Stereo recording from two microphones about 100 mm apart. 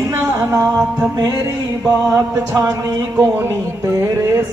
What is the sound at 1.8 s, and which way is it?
Music, 35° right (ahead or behind).